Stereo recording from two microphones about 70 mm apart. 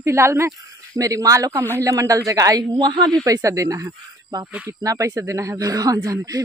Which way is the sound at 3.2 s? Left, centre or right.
Right.